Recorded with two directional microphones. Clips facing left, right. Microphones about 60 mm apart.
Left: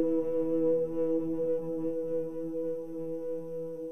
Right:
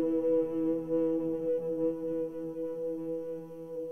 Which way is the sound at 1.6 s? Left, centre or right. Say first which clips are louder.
Right 1 dB; right.